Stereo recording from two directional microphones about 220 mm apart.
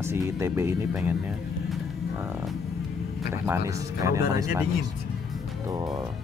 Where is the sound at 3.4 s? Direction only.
10° right (ahead or behind).